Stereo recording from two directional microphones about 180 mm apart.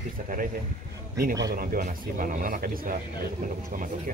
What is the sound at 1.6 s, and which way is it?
Speech, 50° right (ahead or behind).